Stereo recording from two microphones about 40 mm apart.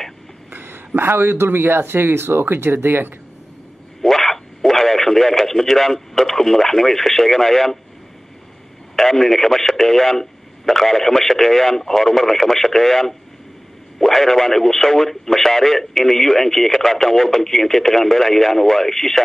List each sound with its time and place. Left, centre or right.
0.5 s speech: right
4.0 s speech: centre
8.9 s speech: centre